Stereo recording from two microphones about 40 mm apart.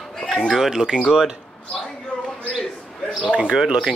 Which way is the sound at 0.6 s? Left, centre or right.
Centre.